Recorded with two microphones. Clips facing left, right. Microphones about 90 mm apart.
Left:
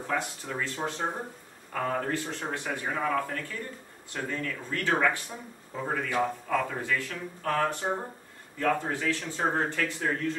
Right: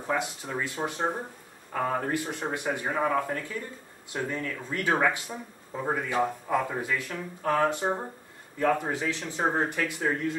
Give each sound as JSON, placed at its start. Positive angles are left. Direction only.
{"t": 0.0, "sound": "speech", "side_deg": -15}